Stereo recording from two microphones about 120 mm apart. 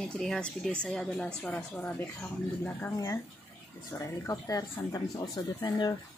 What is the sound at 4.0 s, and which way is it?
Speech, 30° left (ahead or behind).